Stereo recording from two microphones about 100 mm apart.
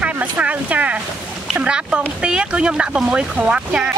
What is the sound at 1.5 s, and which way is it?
Speech, 10° right (ahead or behind).